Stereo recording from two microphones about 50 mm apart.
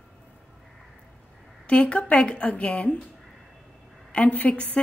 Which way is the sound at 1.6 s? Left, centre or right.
Left.